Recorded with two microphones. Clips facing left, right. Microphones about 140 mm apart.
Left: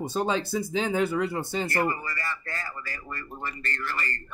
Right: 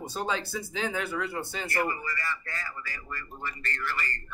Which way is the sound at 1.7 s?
35° left (ahead or behind).